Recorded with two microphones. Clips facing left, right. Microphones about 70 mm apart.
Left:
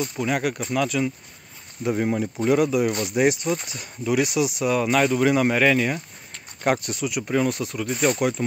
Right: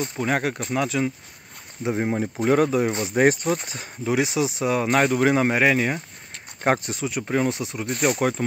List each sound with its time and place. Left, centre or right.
0.0 s speech: right
2.4 s speech: right
3.2 s speech: right
4.8 s speech: right
7.5 s speech: right
7.9 s speech: centre
8.2 s speech: right